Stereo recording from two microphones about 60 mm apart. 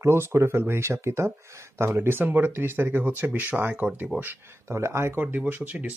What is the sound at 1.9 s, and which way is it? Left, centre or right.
Speech, right.